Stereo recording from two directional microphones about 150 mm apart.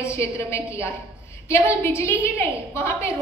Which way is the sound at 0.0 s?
20° left (ahead or behind).